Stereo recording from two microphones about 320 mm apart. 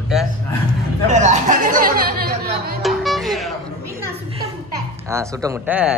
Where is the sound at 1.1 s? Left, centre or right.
Right.